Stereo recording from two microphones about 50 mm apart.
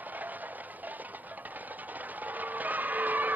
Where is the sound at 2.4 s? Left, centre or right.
Right.